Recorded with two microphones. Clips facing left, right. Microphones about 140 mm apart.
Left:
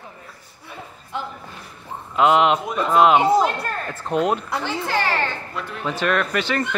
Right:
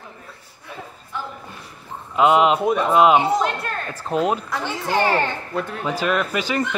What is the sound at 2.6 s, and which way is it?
Speech, 55° right (ahead or behind).